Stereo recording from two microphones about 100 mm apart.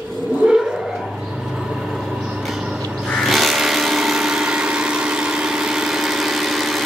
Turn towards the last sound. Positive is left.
turn(degrees=0)  # may be behind; listen again after turning